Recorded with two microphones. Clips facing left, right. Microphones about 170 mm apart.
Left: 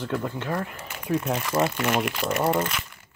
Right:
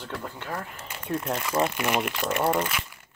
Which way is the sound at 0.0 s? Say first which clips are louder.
Left 7 dB; 45° left (ahead or behind).